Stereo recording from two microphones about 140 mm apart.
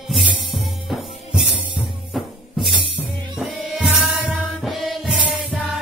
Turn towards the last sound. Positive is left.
turn(degrees=-5)  # may be behind; listen again after turning